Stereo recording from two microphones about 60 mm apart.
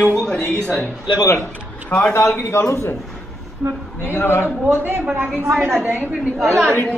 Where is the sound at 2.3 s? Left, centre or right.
Left.